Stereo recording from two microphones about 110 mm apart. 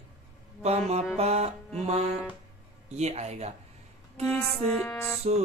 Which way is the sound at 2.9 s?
85° right.